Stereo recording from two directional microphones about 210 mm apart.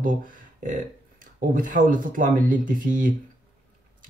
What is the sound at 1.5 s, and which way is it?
Speech, 40° right (ahead or behind).